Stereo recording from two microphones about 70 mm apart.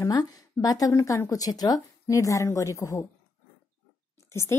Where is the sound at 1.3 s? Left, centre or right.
Left.